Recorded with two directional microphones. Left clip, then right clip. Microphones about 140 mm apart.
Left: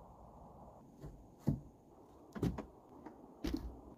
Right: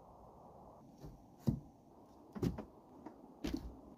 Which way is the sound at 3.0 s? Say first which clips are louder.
Left 1 dB; 5° right (ahead or behind).